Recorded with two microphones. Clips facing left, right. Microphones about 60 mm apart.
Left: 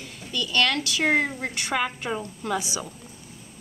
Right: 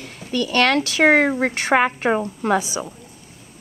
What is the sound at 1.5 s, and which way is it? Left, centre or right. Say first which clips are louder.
A woman's voice: right 9 dB; right.